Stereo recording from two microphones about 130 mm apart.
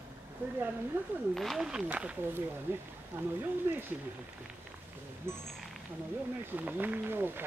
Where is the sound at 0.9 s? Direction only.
15° right (ahead or behind).